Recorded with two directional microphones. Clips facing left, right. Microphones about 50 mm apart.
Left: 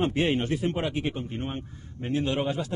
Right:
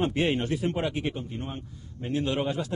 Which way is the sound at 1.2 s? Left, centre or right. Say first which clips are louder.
Left 3 dB; left.